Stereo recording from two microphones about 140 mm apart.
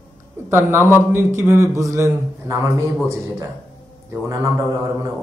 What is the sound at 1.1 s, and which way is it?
A man's voice, 15° right (ahead or behind).